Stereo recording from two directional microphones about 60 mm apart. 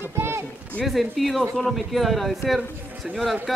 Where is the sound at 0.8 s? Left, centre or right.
Centre.